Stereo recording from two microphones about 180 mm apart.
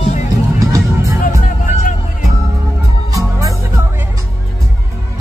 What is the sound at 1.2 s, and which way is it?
Music, 45° left (ahead or behind).